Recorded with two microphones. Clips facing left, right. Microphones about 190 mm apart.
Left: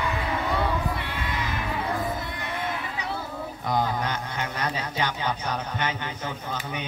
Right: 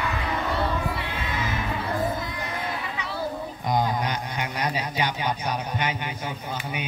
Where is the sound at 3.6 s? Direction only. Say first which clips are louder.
Right 1 dB; 15° right (ahead or behind).